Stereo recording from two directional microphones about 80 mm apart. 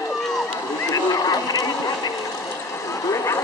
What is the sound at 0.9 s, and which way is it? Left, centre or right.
Vehicle, left.